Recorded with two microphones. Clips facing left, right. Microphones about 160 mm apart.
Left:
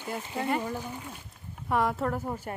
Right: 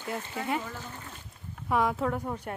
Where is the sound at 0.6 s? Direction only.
15° left (ahead or behind).